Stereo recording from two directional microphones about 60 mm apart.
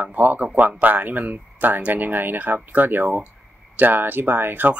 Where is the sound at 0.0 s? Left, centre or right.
Right.